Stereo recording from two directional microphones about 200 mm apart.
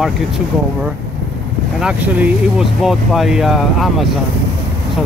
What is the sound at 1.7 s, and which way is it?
Speech, 5° right (ahead or behind).